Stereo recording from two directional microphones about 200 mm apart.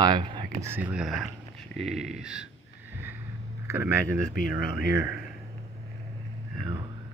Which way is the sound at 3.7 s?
15° right (ahead or behind).